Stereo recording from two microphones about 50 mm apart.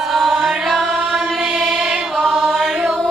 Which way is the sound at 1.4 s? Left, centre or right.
Centre.